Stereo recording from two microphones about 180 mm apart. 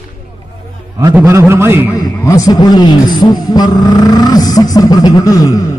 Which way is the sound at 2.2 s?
20° left (ahead or behind).